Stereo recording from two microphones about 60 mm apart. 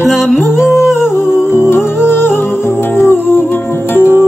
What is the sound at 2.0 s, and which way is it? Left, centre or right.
Music, left.